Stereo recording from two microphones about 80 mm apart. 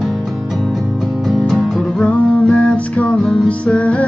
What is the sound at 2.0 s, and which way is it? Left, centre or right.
Music, centre.